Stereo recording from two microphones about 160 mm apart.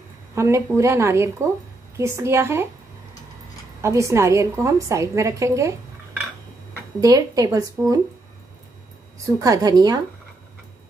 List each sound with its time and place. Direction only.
0.3 s speech: 15° right (ahead or behind)
3.8 s a woman's voice: 20° right (ahead or behind)
7.0 s a woman's voice: 20° right (ahead or behind)
9.2 s a woman's voice: 20° right (ahead or behind)